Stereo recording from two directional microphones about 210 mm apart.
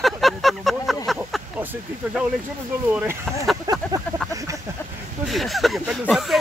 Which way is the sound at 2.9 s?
10° right (ahead or behind).